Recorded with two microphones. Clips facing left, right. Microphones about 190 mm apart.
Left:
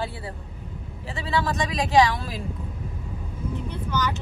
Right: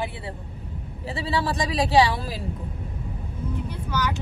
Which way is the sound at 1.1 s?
35° right (ahead or behind).